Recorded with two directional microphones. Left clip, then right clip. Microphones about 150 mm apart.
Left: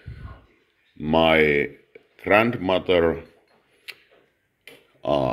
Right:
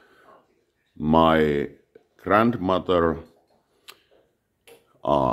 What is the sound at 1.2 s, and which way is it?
Speech, 25° right (ahead or behind).